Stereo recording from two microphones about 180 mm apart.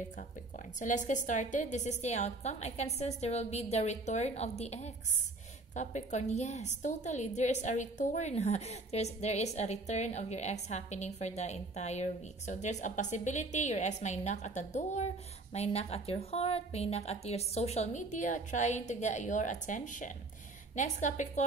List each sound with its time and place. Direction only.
0.7 s a woman's voice: 45° left (ahead or behind)